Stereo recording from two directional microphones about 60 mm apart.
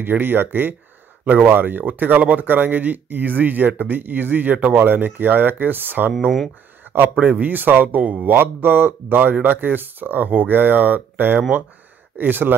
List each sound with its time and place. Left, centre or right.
0.0 s speech: right
8.0 s speech: centre
8.3 s speech: right